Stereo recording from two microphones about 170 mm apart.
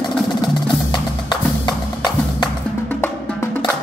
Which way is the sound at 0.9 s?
25° left (ahead or behind).